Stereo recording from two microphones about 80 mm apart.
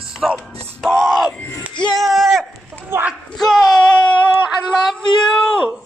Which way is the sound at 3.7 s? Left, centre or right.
Centre.